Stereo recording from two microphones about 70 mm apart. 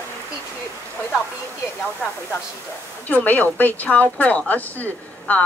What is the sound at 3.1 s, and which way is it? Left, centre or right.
Speech, left.